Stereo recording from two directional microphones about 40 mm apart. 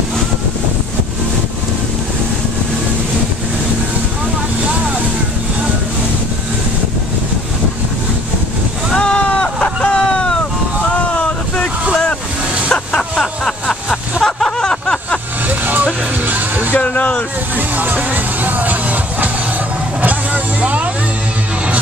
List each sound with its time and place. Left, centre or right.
8.9 s a sound: left
9.8 s vehicle: left
11.1 s wind noise: left
11.9 s vehicle: left
13.1 s a sound: centre
14.2 s a sound: centre
15.4 s music: right
16.8 s vehicle: left
17.6 s music: right
20.0 s vehicle: right